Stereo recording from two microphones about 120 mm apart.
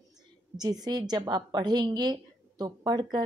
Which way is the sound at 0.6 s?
35° right (ahead or behind).